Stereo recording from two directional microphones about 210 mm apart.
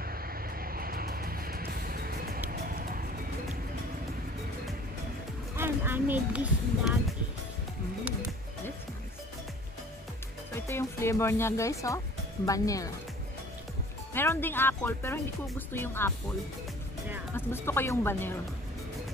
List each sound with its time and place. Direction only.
0.0 s music: 45° right (ahead or behind)
5.6 s speech: 10° right (ahead or behind)
10.5 s speech: 15° left (ahead or behind)
14.1 s speech: 10° left (ahead or behind)
17.5 s speech: 10° left (ahead or behind)